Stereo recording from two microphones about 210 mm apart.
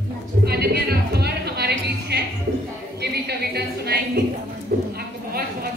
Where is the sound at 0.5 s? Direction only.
50° right (ahead or behind).